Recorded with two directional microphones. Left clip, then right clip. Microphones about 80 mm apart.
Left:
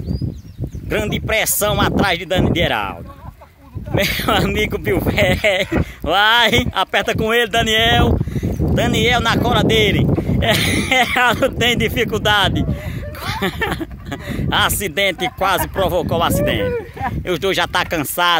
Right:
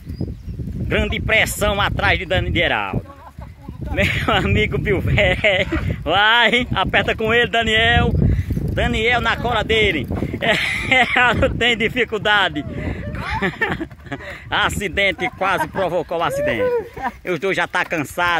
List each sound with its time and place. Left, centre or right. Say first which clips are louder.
0.8 s speech: even; left
4.0 s speech: left 1 dB; centre
7.8 s speech: left 2 dB; left